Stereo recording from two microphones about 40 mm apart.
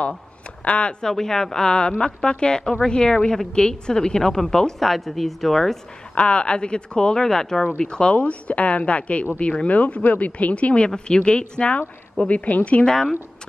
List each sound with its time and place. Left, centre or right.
0.7 s speech: left
1.0 s a woman's voice: centre
4.7 s a woman's voice: centre
6.1 s a woman's voice: left
7.2 s a woman's voice: centre
7.8 s a woman's voice: left
8.2 s a woman's voice: left
12.3 s speech: left
12.8 s a woman's voice: centre